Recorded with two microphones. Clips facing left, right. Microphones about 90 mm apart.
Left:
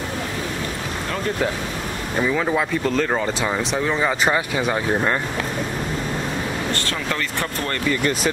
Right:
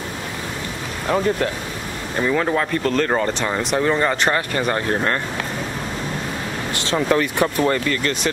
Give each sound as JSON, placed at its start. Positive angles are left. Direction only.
{"t": 2.2, "sound": "speech", "side_deg": 0}
{"t": 6.7, "sound": "speech", "side_deg": -10}